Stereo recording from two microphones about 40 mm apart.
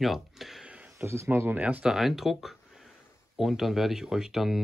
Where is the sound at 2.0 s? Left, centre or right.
Centre.